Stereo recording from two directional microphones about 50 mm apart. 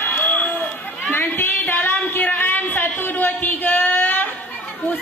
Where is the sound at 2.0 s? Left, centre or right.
Left.